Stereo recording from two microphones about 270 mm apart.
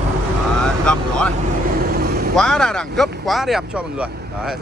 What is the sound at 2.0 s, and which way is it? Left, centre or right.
Vehicle, right.